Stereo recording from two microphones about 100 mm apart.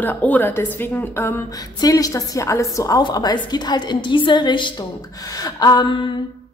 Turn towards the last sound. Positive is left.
turn(degrees=45)  # may be behind; listen again after turning